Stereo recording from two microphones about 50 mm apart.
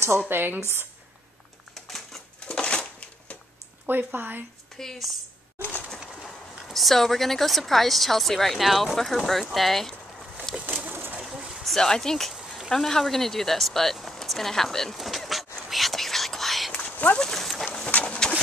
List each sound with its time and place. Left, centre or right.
0.3 s speech: right
1.7 s typewriter: centre
2.4 s a sound: centre
3.8 s speech: right
4.7 s speech: centre
6.2 s speech: centre
10.7 s bird: right
11.2 s a sound: centre
11.6 s speech: centre
15.0 s whispering: centre
16.9 s dog: left
17.2 s dog: centre
17.9 s a sound: left